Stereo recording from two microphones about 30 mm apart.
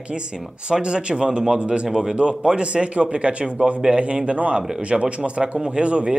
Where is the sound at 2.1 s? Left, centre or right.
Right.